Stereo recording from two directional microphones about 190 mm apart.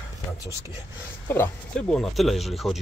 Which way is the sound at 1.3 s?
10° left (ahead or behind).